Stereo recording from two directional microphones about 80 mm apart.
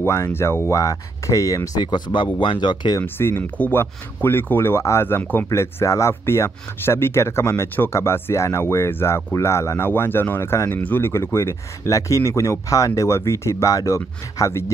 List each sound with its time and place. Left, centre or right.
0.0 s speech: left
0.7 s speech: left
1.8 s speech: left
2.4 s speech: left
3.0 s speech: left
5.5 s speech: left